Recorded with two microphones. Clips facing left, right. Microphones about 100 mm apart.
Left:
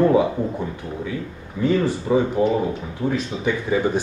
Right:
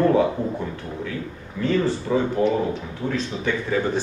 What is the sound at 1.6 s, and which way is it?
Speech, 15° left (ahead or behind).